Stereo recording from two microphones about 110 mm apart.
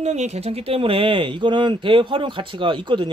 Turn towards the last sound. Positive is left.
turn(degrees=-45)  # may be behind; listen again after turning